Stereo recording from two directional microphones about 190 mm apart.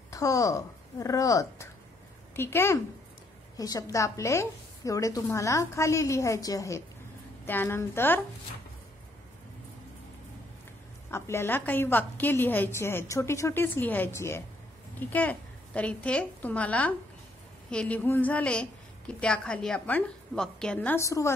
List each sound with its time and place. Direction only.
0.1 s a woman's voice: 15° left (ahead or behind)
11.1 s a woman's voice: 15° left (ahead or behind)